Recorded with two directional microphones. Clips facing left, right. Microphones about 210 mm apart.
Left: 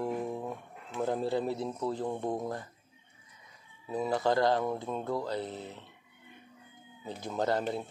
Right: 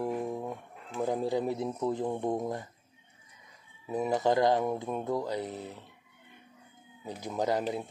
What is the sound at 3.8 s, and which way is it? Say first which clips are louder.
Speech: right 2 dB; 15° right (ahead or behind).